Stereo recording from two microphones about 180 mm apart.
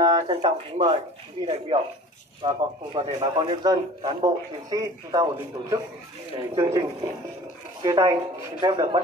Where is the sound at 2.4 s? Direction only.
25° right (ahead or behind).